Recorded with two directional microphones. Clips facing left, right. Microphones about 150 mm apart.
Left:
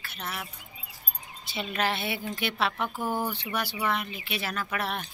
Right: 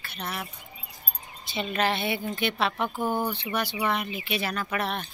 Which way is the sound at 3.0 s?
20° right (ahead or behind).